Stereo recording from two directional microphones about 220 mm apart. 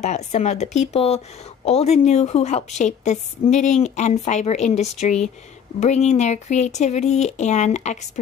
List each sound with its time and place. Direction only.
0.0 s a woman's voice: 30° left (ahead or behind)